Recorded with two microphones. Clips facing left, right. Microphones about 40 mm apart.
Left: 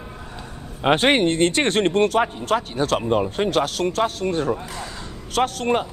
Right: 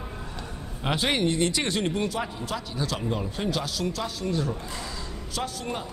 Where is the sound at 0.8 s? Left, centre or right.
Left.